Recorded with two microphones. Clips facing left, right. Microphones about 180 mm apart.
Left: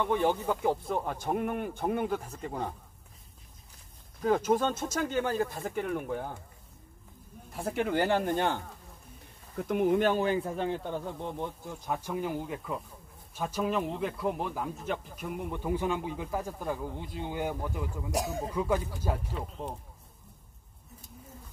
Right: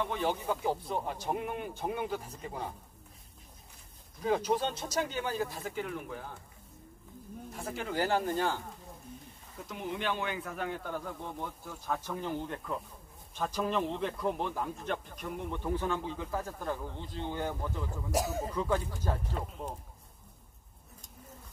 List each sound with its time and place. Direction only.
0.1 s speech: 55° left (ahead or behind)
4.2 s speech: 50° left (ahead or behind)
7.7 s speech: 65° left (ahead or behind)
9.6 s speech: 55° left (ahead or behind); by 18.1 s 10° left (ahead or behind)
18.1 s speech: centre (ahead or behind)
18.5 s speech: 10° left (ahead or behind)